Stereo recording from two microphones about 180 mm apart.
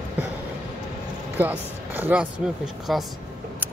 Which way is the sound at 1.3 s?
10° right (ahead or behind).